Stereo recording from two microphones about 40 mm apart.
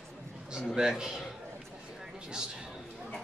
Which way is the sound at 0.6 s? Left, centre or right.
Centre.